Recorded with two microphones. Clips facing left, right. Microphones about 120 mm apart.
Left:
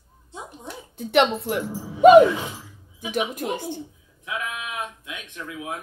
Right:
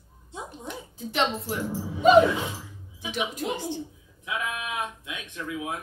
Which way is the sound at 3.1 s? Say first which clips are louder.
Left 4 dB; 50° left (ahead or behind).